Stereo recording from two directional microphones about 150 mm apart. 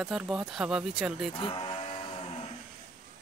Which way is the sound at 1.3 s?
35° left (ahead or behind).